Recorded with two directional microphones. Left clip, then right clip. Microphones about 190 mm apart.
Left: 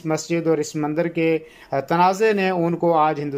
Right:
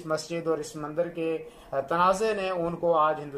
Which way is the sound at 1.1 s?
60° left (ahead or behind).